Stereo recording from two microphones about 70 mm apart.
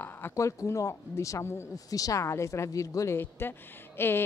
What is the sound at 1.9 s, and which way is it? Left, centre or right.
Speech, left.